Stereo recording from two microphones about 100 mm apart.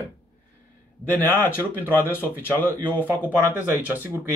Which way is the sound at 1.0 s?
20° left (ahead or behind).